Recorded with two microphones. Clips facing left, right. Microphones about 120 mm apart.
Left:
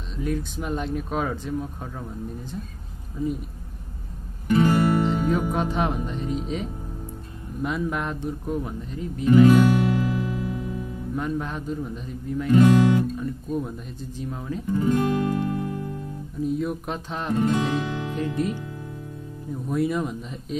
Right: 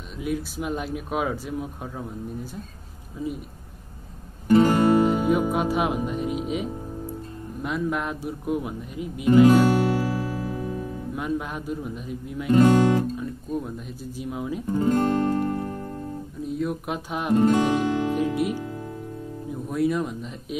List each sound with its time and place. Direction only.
0.2 s speech: 10° right (ahead or behind)
4.5 s music: 35° right (ahead or behind)
5.0 s speech: 10° right (ahead or behind)
9.3 s music: 30° right (ahead or behind)
11.1 s speech: 10° right (ahead or behind)
12.4 s speech: 35° right (ahead or behind)
13.2 s speech: centre (ahead or behind)
14.7 s music: 35° right (ahead or behind)
16.4 s speech: centre (ahead or behind)
17.4 s music: 35° right (ahead or behind)
18.1 s music: 10° right (ahead or behind)
19.7 s speech: centre (ahead or behind)